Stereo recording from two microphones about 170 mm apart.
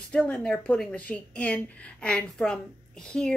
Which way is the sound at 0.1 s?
5° left (ahead or behind).